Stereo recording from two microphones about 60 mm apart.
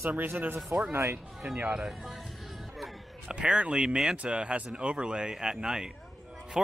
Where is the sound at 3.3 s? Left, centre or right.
Centre.